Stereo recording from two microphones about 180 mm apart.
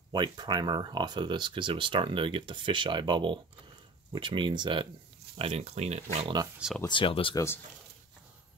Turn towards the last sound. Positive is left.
turn(degrees=30)  # may be behind; listen again after turning